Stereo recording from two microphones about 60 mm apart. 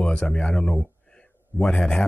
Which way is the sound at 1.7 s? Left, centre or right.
Centre.